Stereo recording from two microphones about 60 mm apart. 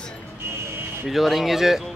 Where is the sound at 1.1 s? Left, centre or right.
Centre.